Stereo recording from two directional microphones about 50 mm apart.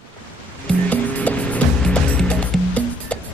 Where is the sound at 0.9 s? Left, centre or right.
Left.